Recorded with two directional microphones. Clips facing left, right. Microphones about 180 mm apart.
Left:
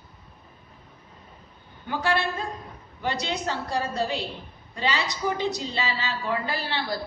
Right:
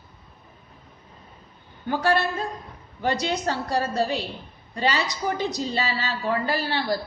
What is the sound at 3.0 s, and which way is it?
A woman's voice, 40° right (ahead or behind).